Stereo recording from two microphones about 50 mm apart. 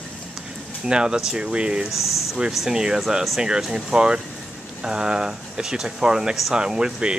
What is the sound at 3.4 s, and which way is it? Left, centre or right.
Speech, centre.